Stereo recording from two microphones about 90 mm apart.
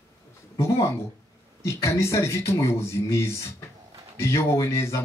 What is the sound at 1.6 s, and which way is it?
Speech, 30° left (ahead or behind).